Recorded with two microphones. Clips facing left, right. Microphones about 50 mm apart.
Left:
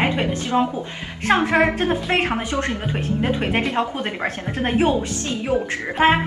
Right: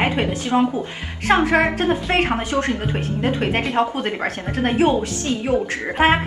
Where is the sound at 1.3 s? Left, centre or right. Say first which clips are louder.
Right 1 dB; centre.